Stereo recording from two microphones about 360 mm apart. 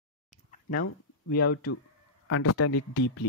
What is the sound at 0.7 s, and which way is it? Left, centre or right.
Speech, left.